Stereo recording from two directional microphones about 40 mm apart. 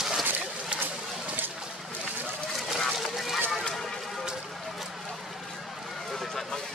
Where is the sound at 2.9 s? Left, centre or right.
Centre.